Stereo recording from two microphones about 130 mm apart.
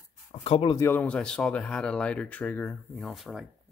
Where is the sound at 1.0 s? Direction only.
5° left (ahead or behind).